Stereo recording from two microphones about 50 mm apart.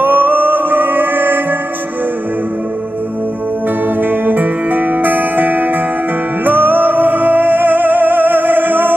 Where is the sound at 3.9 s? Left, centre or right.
Right.